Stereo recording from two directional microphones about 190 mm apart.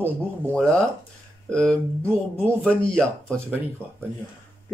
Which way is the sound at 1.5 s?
5° left (ahead or behind).